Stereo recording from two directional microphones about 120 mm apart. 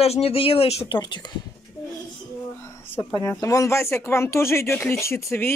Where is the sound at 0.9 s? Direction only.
40° left (ahead or behind).